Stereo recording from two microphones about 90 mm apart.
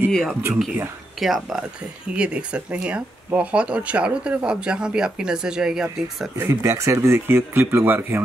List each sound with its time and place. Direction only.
0.1 s speech: 5° left (ahead or behind)
6.3 s speech: 35° right (ahead or behind)